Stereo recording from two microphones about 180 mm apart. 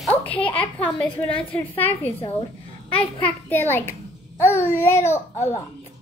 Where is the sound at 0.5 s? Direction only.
30° left (ahead or behind).